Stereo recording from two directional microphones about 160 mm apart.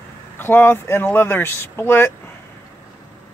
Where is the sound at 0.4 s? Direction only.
15° left (ahead or behind).